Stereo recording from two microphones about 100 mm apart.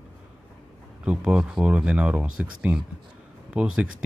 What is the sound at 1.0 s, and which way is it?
Speech, 10° right (ahead or behind).